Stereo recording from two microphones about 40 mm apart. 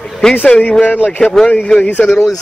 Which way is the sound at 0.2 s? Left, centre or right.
Centre.